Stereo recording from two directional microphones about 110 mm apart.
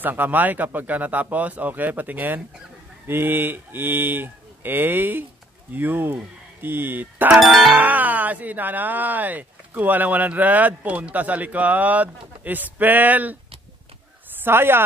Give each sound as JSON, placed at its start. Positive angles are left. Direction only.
{"t": 0.0, "sound": "speech", "side_deg": -15}
{"t": 7.3, "sound": "music", "side_deg": -5}
{"t": 7.8, "sound": "speech", "side_deg": -15}
{"t": 14.4, "sound": "speech", "side_deg": -20}